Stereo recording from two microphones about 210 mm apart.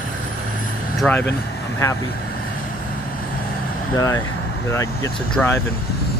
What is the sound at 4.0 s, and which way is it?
Speech, 15° left (ahead or behind).